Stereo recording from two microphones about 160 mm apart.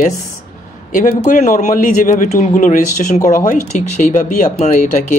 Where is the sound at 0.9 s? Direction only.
60° left (ahead or behind).